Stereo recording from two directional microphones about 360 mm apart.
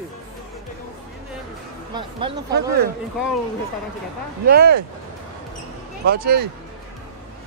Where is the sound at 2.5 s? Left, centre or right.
Right.